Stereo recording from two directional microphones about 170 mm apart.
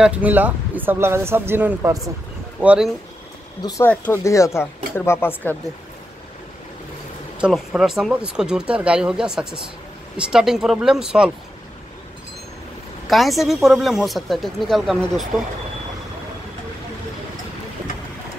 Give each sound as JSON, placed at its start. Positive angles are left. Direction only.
{"t": 0.0, "sound": "speech", "side_deg": -10}
{"t": 3.6, "sound": "speech", "side_deg": 20}
{"t": 7.3, "sound": "speech", "side_deg": -5}
{"t": 13.1, "sound": "speech", "side_deg": 0}